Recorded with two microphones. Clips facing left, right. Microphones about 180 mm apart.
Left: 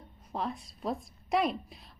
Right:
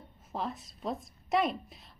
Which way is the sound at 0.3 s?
Centre (ahead or behind).